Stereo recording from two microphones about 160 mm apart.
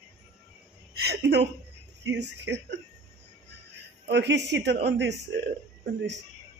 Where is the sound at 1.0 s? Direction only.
90° right.